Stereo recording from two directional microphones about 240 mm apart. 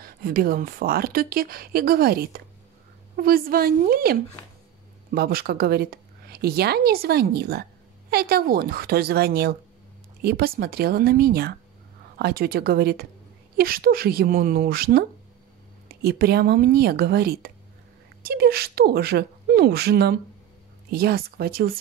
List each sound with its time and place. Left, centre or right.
0.0 s a woman's voice: right